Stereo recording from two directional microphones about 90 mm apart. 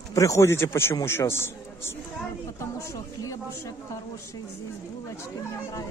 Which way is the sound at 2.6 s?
35° left (ahead or behind).